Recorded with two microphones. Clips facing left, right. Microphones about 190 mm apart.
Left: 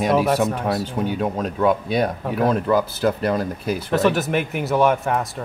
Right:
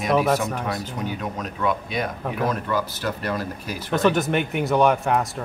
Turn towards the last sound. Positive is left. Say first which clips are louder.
# even
turn(degrees=0)  # may be behind; listen again after turning